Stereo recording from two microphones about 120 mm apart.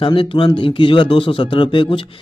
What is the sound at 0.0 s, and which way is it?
Speech, 45° left (ahead or behind).